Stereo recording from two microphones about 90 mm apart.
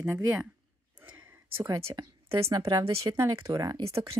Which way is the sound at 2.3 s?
35° right (ahead or behind).